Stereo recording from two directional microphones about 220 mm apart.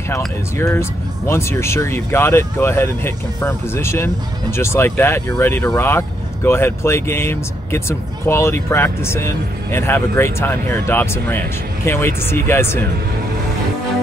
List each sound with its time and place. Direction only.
0.6 s speech: 10° left (ahead or behind)